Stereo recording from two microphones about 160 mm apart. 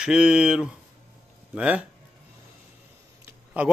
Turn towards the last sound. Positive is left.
turn(degrees=-10)  # may be behind; listen again after turning